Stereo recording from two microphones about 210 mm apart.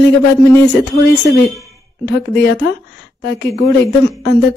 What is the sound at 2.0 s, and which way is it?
A woman's voice, 55° left (ahead or behind).